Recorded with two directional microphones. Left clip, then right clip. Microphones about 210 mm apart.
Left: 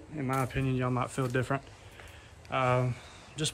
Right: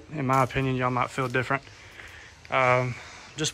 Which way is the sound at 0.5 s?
Centre (ahead or behind).